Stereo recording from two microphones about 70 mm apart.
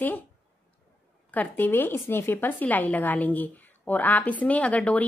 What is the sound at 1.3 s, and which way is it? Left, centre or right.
A woman's voice, left.